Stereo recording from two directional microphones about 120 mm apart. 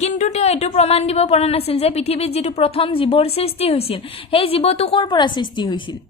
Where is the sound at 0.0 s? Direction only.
70° left (ahead or behind); by 5.9 s 40° left (ahead or behind).